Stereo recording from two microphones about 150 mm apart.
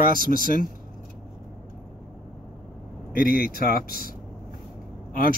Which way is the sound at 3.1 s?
70° left (ahead or behind).